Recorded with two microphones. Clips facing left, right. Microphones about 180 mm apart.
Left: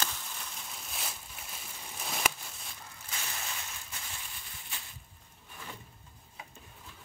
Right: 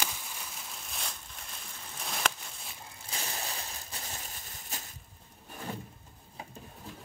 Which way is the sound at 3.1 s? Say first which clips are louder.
Right 3 dB; 35° right (ahead or behind).